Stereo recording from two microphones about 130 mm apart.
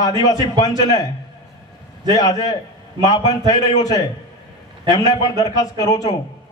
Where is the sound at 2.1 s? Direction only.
30° left (ahead or behind).